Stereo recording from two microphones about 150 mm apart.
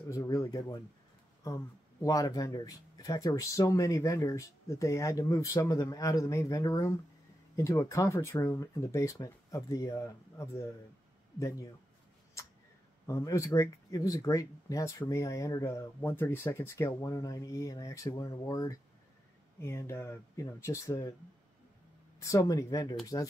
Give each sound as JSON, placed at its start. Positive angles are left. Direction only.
{"t": 0.1, "sound": "speech", "side_deg": 20}
{"t": 13.0, "sound": "speech", "side_deg": 20}
{"t": 22.2, "sound": "speech", "side_deg": 25}